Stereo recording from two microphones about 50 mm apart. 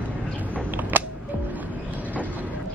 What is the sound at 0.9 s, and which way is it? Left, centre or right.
Music, right.